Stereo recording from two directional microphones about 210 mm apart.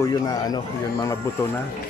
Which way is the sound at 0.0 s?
15° left (ahead or behind).